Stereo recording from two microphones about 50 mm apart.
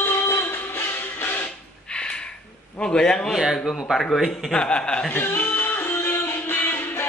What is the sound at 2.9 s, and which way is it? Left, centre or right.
Speech, centre.